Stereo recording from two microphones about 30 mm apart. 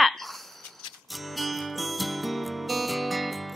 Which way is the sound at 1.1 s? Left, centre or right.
Centre.